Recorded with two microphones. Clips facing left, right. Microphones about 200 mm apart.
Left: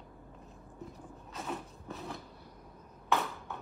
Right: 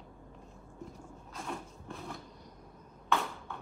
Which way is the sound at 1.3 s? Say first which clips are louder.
Left 1 dB; 5° left (ahead or behind).